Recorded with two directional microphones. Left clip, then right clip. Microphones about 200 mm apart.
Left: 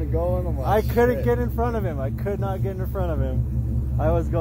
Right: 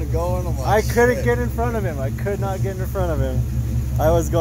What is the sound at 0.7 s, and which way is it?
Speech, centre (ahead or behind).